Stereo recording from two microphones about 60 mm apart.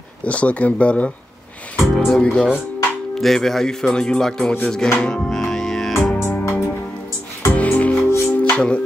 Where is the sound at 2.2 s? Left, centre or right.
Centre.